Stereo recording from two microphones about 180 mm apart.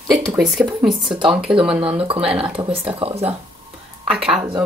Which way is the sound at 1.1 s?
25° right (ahead or behind).